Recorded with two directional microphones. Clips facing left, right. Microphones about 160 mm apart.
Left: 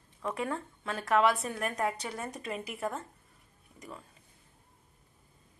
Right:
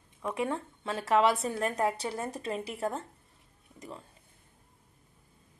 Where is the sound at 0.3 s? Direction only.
25° right (ahead or behind).